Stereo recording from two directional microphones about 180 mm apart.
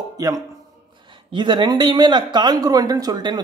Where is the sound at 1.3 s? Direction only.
25° right (ahead or behind).